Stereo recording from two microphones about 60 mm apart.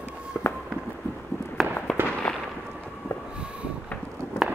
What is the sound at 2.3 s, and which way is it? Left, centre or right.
Firecracker, centre.